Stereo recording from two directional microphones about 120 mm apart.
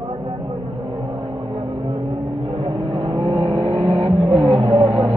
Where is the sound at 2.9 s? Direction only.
50° right (ahead or behind).